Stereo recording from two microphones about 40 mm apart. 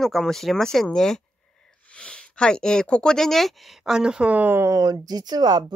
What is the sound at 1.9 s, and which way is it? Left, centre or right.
Speech, left.